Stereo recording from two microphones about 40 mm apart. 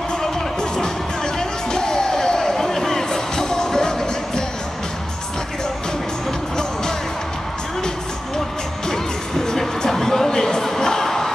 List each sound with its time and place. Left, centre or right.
0.2 s music: centre
8.8 s music: centre